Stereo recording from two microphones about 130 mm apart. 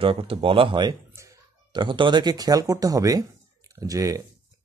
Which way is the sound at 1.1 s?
25° right (ahead or behind).